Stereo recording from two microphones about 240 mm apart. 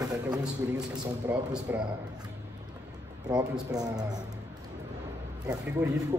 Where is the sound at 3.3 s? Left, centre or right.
Centre.